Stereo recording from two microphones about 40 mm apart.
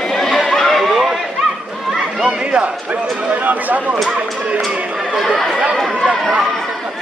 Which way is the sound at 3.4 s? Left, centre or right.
Right.